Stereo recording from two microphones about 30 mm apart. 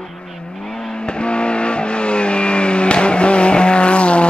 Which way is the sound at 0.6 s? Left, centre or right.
Left.